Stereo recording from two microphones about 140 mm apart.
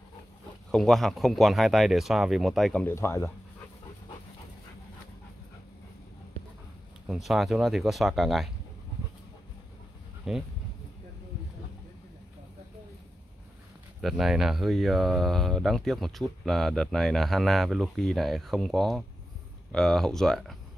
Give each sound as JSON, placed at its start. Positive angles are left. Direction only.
{"t": 0.7, "sound": "speech", "side_deg": 5}
{"t": 2.8, "sound": "speech", "side_deg": 20}
{"t": 7.1, "sound": "speech", "side_deg": 0}
{"t": 10.3, "sound": "speech", "side_deg": -5}
{"t": 14.0, "sound": "speech", "side_deg": 0}